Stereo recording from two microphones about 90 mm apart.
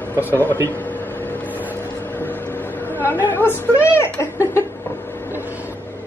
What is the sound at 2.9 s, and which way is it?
A woman's voice, 25° left (ahead or behind).